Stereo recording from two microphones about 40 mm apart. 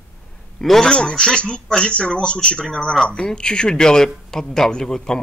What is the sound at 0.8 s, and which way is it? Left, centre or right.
Speech, left.